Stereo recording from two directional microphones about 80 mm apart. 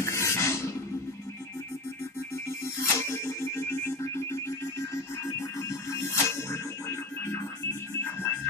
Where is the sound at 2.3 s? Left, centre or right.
Left.